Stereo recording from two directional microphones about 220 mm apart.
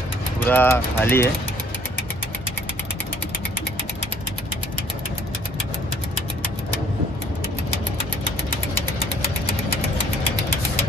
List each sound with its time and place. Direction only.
0.5 s speech: 10° left (ahead or behind)